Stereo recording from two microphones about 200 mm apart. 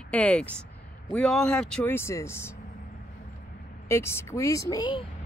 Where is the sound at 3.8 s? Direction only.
15° left (ahead or behind).